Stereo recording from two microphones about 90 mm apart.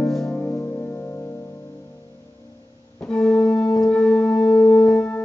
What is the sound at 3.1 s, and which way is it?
Organ, 10° left (ahead or behind).